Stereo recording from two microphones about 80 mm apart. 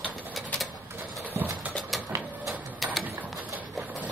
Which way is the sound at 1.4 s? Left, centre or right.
Right.